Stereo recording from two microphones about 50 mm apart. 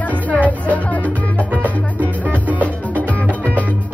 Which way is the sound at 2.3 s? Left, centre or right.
Right.